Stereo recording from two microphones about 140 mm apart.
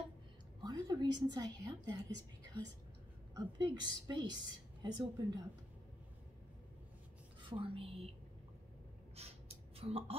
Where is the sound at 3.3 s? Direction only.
30° right (ahead or behind).